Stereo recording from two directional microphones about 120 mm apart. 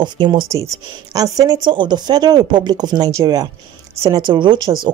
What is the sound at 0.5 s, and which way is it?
Speech, 30° right (ahead or behind).